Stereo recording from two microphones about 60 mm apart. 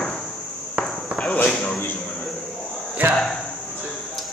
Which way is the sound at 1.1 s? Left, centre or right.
Centre.